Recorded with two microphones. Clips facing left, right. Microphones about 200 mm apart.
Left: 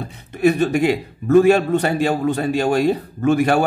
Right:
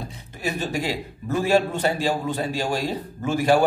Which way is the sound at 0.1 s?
60° left (ahead or behind).